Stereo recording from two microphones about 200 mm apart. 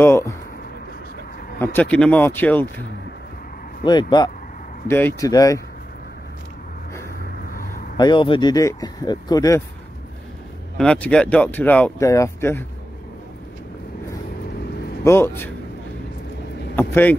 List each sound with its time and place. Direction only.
0.0 s speech: 15° left (ahead or behind)
1.6 s speech: 10° left (ahead or behind)
4.1 s speech: 20° left (ahead or behind)
4.8 s speech: 10° left (ahead or behind)
7.3 s vehicle: 45° left (ahead or behind)
8.0 s speech: 25° left (ahead or behind)
10.8 s speech: 5° left (ahead or behind)
15.0 s speech: 10° left (ahead or behind)
16.7 s speech: 10° left (ahead or behind)